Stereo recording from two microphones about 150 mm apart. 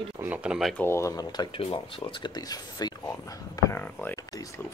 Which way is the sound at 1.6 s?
45° left (ahead or behind).